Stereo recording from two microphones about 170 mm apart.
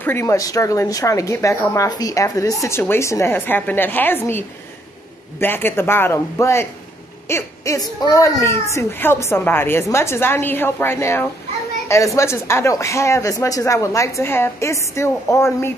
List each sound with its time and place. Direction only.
0.0 s speech: 15° left (ahead or behind)